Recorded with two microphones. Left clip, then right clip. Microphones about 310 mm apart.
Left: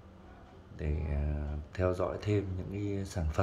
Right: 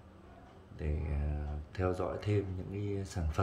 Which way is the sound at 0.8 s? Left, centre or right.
Centre.